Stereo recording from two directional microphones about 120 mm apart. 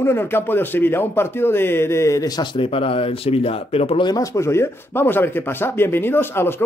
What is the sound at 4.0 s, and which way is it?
A man's voice, 30° left (ahead or behind).